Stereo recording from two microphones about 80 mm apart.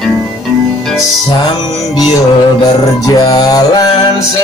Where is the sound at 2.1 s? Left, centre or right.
Left.